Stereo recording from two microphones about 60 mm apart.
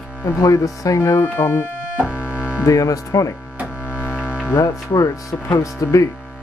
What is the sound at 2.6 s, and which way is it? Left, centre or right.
Speech, left.